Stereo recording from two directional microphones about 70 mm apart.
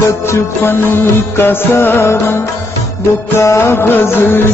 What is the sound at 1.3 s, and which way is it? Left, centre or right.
Music, left.